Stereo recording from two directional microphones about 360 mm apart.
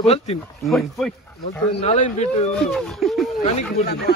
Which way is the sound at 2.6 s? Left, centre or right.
Centre.